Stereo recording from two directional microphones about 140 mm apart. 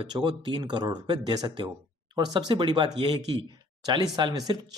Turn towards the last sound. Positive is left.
turn(degrees=-30)  # may be behind; listen again after turning